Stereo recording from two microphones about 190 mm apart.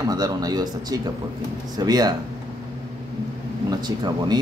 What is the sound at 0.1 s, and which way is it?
A man's voice, 20° right (ahead or behind).